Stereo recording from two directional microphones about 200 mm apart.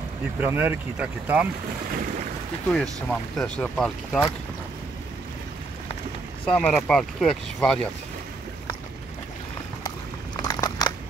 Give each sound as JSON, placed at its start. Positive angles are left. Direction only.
{"t": 0.4, "sound": "speech", "side_deg": -10}
{"t": 2.7, "sound": "speech", "side_deg": 0}
{"t": 6.4, "sound": "speech", "side_deg": 5}
{"t": 10.4, "sound": "a sound", "side_deg": 15}